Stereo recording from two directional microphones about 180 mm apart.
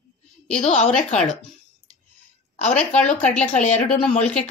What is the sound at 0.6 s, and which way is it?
Speech, 40° left (ahead or behind).